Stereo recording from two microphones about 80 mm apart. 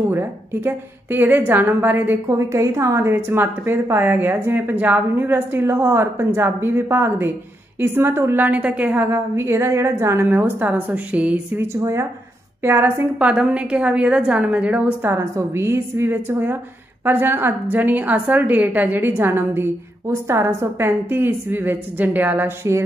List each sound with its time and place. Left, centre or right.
0.7 s a woman's voice: right
2.2 s a woman's voice: right
8.5 s a woman's voice: centre
11.6 s a woman's voice: right
13.2 s a woman's voice: centre
15.0 s a woman's voice: right